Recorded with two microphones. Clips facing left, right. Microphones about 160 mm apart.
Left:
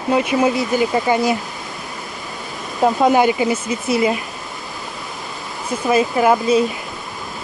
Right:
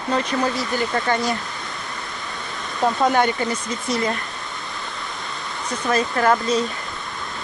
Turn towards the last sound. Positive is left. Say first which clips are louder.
# left 4 dB
turn(degrees=10)  # may be behind; listen again after turning